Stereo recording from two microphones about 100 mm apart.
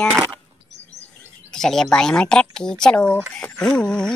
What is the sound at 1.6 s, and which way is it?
Speech, 5° left (ahead or behind).